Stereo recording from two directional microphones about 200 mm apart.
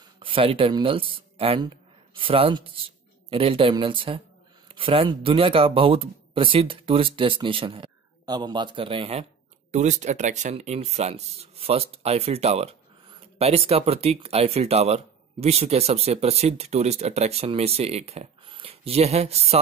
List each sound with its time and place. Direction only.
0.2 s speech: 25° right (ahead or behind)